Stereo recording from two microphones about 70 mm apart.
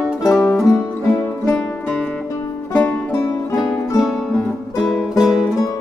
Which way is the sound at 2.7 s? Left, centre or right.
Left.